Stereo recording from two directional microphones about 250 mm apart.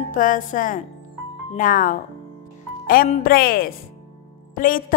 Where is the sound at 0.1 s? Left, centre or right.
Left.